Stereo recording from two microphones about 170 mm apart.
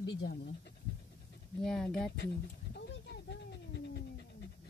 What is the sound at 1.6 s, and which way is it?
Speech, 5° left (ahead or behind).